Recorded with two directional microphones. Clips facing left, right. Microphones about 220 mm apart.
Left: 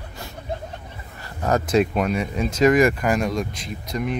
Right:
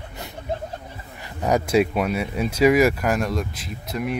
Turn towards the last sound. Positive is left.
turn(degrees=-5)  # may be behind; listen again after turning